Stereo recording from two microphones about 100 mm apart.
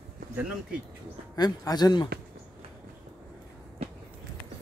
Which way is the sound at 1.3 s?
40° left (ahead or behind).